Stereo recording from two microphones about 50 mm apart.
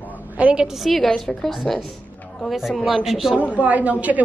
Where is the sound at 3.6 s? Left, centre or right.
Right.